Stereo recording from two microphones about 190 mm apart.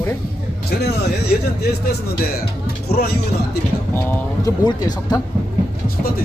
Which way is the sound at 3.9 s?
20° left (ahead or behind).